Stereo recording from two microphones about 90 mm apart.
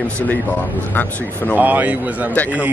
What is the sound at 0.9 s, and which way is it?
Speech, 20° left (ahead or behind).